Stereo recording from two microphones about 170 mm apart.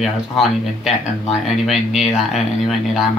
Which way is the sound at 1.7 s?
Centre (ahead or behind).